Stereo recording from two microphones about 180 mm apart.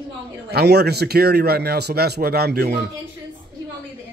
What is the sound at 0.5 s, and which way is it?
A man's voice, 65° right (ahead or behind).